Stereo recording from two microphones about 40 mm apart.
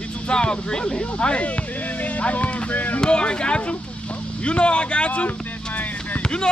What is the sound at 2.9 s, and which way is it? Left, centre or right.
Speech, left.